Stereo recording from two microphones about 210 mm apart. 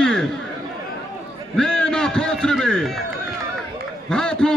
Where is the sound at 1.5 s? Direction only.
5° left (ahead or behind).